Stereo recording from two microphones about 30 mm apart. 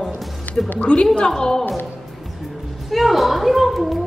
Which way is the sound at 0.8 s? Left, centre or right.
Left.